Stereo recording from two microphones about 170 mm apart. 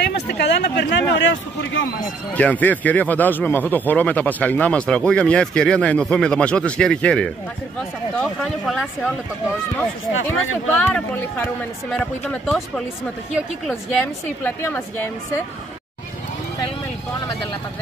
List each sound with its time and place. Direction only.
0.3 s speech: 80° left
2.3 s speech: 10° left (ahead or behind)
10.7 s speech: 10° left (ahead or behind)